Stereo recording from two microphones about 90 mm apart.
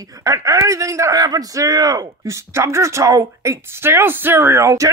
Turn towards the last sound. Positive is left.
turn(degrees=-35)  # may be behind; listen again after turning